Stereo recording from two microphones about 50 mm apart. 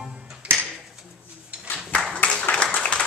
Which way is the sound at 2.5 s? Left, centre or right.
Centre.